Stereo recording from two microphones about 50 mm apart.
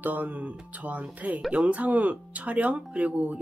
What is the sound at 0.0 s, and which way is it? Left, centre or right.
Speech, right.